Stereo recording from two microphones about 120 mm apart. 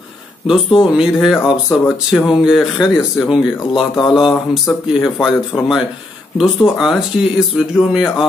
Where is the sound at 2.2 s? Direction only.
5° right (ahead or behind).